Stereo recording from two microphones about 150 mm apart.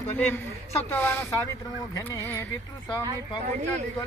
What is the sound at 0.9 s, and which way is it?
Speech, 15° left (ahead or behind).